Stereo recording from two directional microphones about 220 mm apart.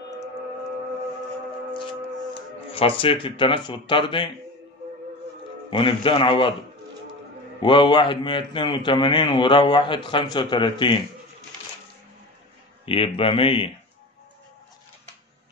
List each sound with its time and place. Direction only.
2.3 s speech: 25° left (ahead or behind)
5.7 s a man's voice: 25° left (ahead or behind)
7.6 s a man's voice: 20° left (ahead or behind)
12.8 s a man's voice: 25° left (ahead or behind)